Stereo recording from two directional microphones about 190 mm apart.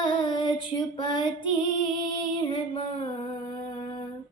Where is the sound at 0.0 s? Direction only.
25° left (ahead or behind).